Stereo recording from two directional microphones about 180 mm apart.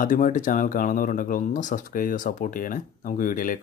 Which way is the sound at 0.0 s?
50° left (ahead or behind).